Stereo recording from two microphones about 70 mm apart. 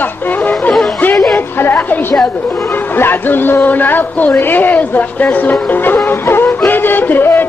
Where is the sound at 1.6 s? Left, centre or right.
Left.